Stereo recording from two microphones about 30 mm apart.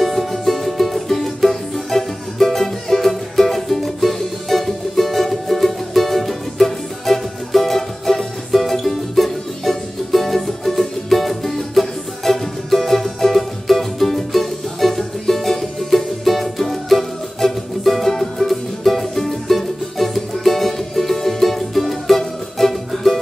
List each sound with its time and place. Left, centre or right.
0.0 s music: centre